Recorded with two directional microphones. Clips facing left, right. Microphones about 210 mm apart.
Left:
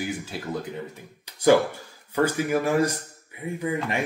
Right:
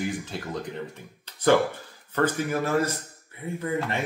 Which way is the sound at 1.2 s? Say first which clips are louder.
Left 2 dB; 10° left (ahead or behind).